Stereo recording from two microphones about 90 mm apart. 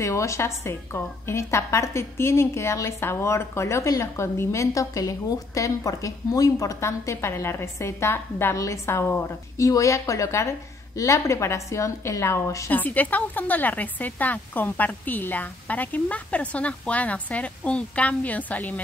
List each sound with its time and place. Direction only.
0.0 s a woman's voice: 35° left (ahead or behind)
12.7 s a woman's voice: 20° left (ahead or behind)